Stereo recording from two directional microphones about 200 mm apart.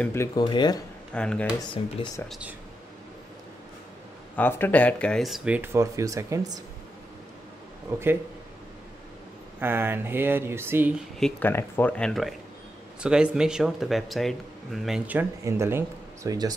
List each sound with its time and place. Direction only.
0.0 s speech: 10° left (ahead or behind)
0.4 s speech: 25° left (ahead or behind)
1.1 s speech: 5° left (ahead or behind)
1.6 s speech: 20° left (ahead or behind)
2.2 s speech: centre (ahead or behind)
4.4 s speech: 10° left (ahead or behind); by 6.6 s 15° right (ahead or behind)
7.9 s speech: 10° right (ahead or behind)
9.6 s speech: 10° right (ahead or behind)
11.1 s speech: 5° left (ahead or behind); by 16.5 s 20° right (ahead or behind)